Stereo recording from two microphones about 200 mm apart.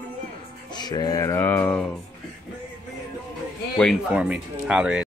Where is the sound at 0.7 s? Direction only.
20° left (ahead or behind).